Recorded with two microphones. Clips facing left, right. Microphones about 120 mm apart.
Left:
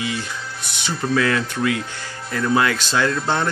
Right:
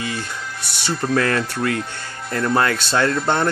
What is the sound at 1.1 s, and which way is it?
Speech, 45° right (ahead or behind).